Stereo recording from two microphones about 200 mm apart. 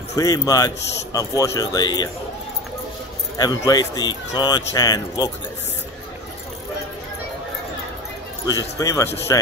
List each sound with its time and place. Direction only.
0.1 s a man's voice: 20° left (ahead or behind)
3.3 s a man's voice: 20° left (ahead or behind)
8.5 s speech: 15° left (ahead or behind)